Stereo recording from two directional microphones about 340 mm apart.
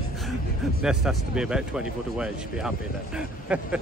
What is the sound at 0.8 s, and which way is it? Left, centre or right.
Speech, centre.